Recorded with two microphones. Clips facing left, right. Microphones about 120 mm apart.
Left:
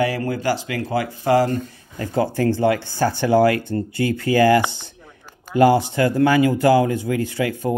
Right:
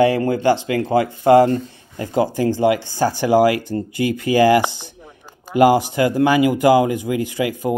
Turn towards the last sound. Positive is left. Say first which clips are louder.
# right 1 dB
turn(degrees=-15)  # may be behind; listen again after turning